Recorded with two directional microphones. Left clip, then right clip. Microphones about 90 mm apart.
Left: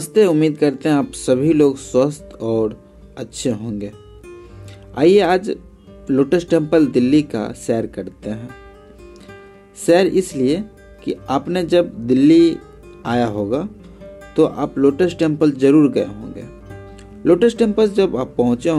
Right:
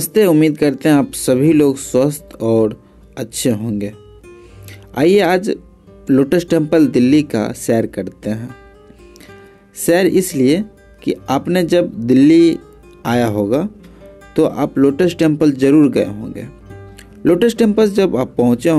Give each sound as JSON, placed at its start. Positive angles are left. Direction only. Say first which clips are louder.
{"t": 0.0, "sound": "speech", "louder": "right 2 dB", "side_deg": -45}
{"t": 4.9, "sound": "speech", "louder": "right 1 dB", "side_deg": -50}
{"t": 9.8, "sound": "speech", "louder": "right 1 dB", "side_deg": -50}